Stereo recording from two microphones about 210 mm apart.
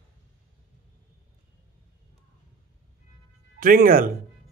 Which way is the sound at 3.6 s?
45° right (ahead or behind).